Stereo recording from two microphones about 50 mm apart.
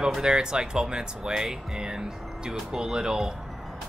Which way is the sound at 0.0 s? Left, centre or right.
Centre.